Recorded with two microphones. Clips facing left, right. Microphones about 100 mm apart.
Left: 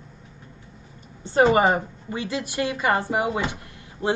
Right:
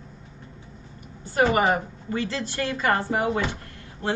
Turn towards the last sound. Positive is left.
turn(degrees=15)  # may be behind; listen again after turning